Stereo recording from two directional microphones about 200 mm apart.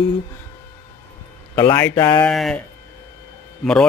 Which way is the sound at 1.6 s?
15° left (ahead or behind).